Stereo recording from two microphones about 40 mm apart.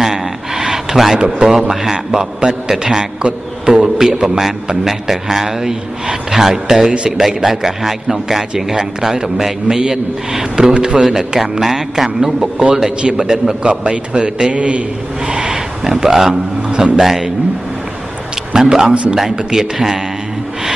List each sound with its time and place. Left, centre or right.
0.0 s gasp: centre
1.1 s a man's voice: centre
11.0 s a man's voice: centre
13.7 s a man's voice: right
15.2 s speech: centre
17.0 s a man's voice: centre
18.5 s speech: centre
18.9 s a man's voice: right
19.1 s a man's voice: centre